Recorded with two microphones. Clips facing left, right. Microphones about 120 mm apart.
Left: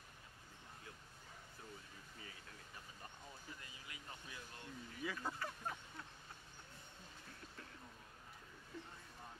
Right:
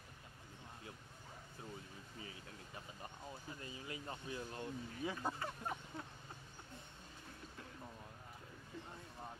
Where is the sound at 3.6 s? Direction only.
30° right (ahead or behind).